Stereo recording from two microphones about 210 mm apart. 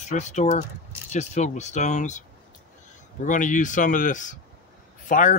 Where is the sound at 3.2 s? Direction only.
40° left (ahead or behind).